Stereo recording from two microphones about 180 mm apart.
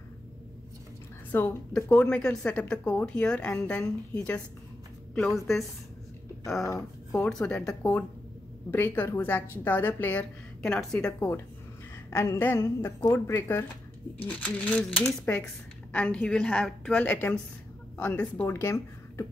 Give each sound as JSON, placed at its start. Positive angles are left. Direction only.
{"t": 1.3, "sound": "speech", "side_deg": 10}
{"t": 6.7, "sound": "speech", "side_deg": 15}
{"t": 7.2, "sound": "speech", "side_deg": 5}